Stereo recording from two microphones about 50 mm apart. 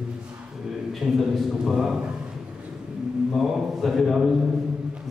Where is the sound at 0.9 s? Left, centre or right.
Centre.